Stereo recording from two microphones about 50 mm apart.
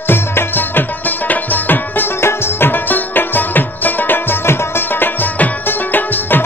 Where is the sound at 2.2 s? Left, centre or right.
Left.